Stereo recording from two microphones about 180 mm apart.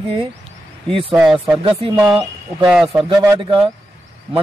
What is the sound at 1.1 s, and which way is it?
Speech, centre (ahead or behind).